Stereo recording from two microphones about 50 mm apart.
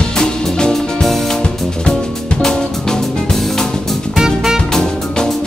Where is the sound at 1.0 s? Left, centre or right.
Centre.